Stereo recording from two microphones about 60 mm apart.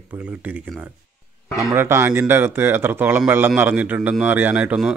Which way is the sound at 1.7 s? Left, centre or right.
Right.